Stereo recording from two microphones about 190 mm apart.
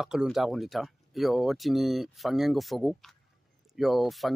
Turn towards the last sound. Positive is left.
turn(degrees=0)  # may be behind; listen again after turning